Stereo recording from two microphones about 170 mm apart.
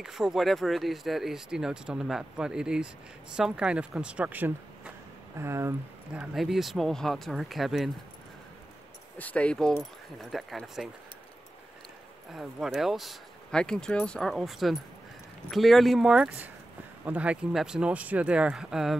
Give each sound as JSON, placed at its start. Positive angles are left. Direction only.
{"t": 0.0, "sound": "speech", "side_deg": -5}
{"t": 6.3, "sound": "speech", "side_deg": 0}
{"t": 9.2, "sound": "speech", "side_deg": 10}
{"t": 12.3, "sound": "speech", "side_deg": 0}